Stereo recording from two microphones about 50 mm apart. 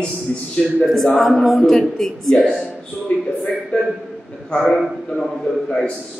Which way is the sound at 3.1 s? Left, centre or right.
Left.